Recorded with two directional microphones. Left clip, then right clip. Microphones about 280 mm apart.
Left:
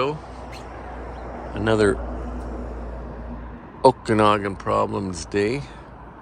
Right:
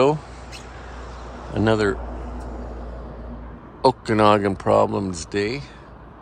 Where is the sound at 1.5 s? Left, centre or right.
Centre.